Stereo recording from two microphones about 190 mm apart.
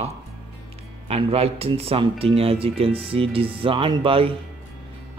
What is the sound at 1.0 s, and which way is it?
Speech, 30° right (ahead or behind).